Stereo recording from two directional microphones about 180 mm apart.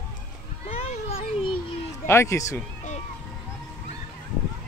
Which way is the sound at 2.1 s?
15° left (ahead or behind).